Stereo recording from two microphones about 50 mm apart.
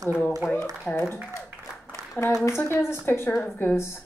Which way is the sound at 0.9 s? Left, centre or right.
Left.